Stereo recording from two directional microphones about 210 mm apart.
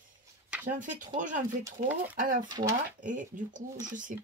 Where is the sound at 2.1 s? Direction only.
40° right (ahead or behind).